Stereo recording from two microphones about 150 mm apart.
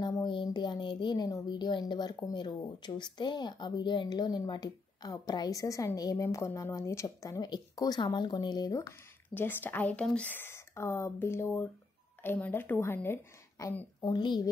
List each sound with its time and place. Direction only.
0.0 s a sound: 30° left (ahead or behind)
2.1 s speech: 25° left (ahead or behind)
9.3 s a woman's voice: 15° left (ahead or behind); by 14.5 s 30° left (ahead or behind)